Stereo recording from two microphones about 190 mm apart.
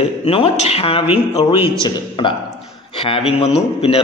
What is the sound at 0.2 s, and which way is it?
A man's voice, 30° left (ahead or behind).